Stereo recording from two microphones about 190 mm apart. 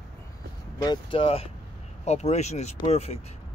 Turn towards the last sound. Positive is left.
turn(degrees=35)  # may be behind; listen again after turning